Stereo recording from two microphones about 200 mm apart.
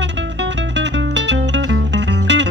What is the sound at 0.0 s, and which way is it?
Music, 60° right (ahead or behind).